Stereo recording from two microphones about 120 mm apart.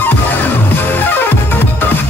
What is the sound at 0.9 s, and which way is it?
Music, 15° left (ahead or behind).